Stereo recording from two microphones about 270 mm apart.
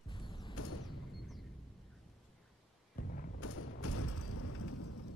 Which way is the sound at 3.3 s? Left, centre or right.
Left.